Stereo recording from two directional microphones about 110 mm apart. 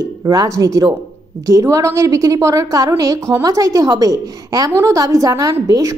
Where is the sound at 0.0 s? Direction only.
35° right (ahead or behind).